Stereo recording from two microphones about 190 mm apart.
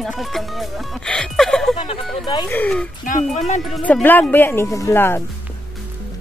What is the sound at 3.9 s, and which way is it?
Speech, 10° left (ahead or behind).